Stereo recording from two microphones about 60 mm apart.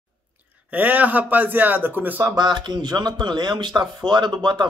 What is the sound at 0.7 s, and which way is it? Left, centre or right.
A man's voice, right.